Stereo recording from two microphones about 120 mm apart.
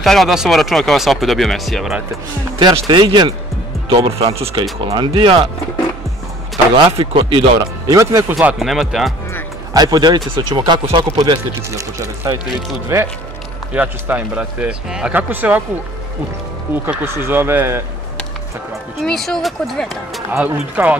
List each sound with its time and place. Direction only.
0.0 s speech: centre (ahead or behind)
2.7 s speech: 40° right (ahead or behind)
4.9 s speech: 45° right (ahead or behind)
6.7 s speech: 45° right (ahead or behind)
7.5 s speech: 25° right (ahead or behind)
8.5 s speech: centre (ahead or behind)
9.8 s speech: 35° right (ahead or behind)
11.7 s a man's voice: 25° right (ahead or behind)
16.7 s speech: 20° right (ahead or behind)
18.9 s speech: centre (ahead or behind)
20.2 s a man's voice: 15° right (ahead or behind)